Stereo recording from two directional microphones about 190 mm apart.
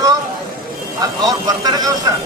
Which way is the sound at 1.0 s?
20° right (ahead or behind).